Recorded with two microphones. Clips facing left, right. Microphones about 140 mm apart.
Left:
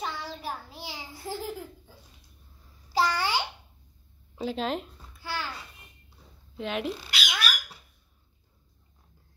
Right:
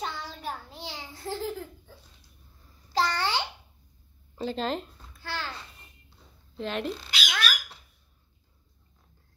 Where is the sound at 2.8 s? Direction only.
10° left (ahead or behind).